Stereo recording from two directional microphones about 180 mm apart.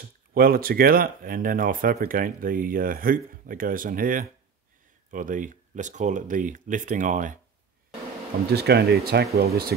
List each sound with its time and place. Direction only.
0.3 s speech: 55° right (ahead or behind)
8.5 s speech: 65° right (ahead or behind)